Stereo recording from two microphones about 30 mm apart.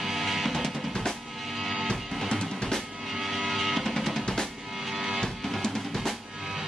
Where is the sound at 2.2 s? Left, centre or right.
Left.